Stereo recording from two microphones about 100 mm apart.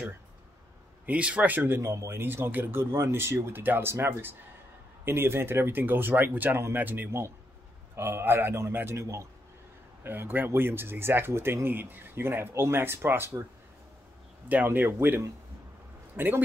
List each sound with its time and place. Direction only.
1.0 s speech: 15° right (ahead or behind)
14.5 s speech: 20° right (ahead or behind)